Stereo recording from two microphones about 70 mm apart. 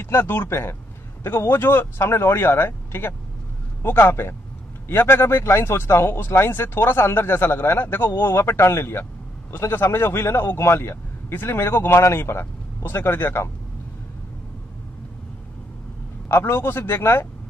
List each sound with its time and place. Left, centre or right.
0.0 s speech: left
16.3 s speech: left